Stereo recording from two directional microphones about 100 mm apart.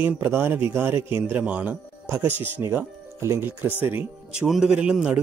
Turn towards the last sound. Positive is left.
turn(degrees=-10)  # may be behind; listen again after turning